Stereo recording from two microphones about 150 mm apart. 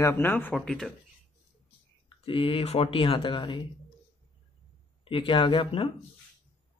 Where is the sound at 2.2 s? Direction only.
35° left (ahead or behind).